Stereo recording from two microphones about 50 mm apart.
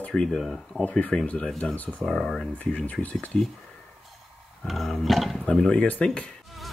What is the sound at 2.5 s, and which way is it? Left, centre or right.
Speech, left.